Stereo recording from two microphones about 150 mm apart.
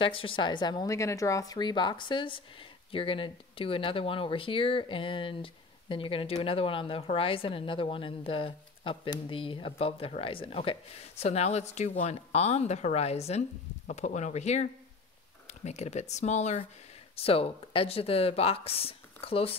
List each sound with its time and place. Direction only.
0.0 s speech: 35° left (ahead or behind)
17.1 s speech: 40° left (ahead or behind)